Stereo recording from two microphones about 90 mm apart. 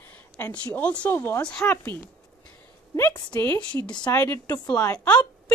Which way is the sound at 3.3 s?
20° left (ahead or behind).